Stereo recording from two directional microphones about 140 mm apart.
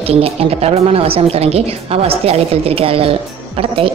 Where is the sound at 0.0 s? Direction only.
45° right (ahead or behind).